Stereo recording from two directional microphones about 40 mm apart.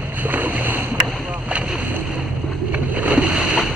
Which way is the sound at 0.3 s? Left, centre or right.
Right.